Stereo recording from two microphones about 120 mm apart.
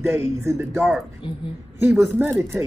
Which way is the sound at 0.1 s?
20° right (ahead or behind).